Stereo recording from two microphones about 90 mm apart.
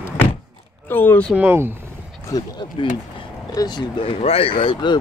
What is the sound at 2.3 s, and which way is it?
Speech, 45° left (ahead or behind).